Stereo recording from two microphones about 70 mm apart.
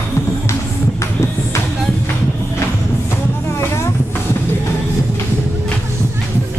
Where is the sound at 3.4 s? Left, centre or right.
Left.